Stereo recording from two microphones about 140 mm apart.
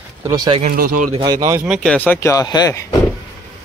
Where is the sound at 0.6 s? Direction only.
90° right.